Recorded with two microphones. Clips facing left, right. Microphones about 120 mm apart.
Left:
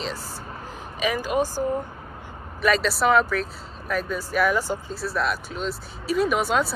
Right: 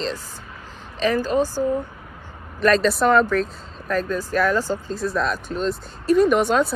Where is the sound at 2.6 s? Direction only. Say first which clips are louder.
Right 4 dB; 5° left (ahead or behind).